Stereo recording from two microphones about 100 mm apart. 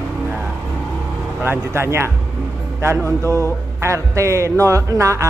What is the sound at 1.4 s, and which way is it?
Music, 25° right (ahead or behind).